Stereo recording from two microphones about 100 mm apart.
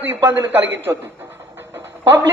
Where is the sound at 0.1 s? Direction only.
20° right (ahead or behind).